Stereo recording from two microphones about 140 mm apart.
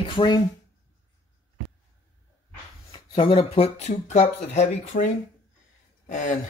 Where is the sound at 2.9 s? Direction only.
35° left (ahead or behind); by 5.0 s 55° left (ahead or behind).